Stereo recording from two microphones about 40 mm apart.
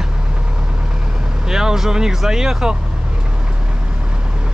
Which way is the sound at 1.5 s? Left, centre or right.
Centre.